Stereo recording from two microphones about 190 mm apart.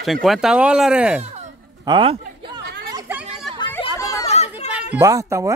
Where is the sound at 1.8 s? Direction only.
25° right (ahead or behind).